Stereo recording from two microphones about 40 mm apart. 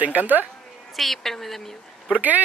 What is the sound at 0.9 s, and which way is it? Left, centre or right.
Speech, centre.